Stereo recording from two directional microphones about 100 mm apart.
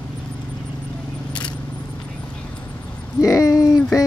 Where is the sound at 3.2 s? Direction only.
35° left (ahead or behind).